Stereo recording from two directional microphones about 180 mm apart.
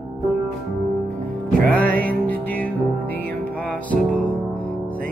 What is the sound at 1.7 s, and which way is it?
Music, 10° left (ahead or behind).